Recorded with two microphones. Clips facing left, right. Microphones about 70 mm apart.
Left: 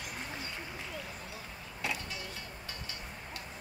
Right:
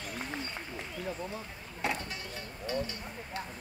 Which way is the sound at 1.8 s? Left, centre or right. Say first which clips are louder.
Right 4 dB; right.